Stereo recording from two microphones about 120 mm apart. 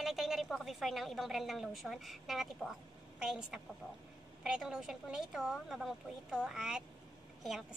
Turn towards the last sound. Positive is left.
turn(degrees=-5)  # may be behind; listen again after turning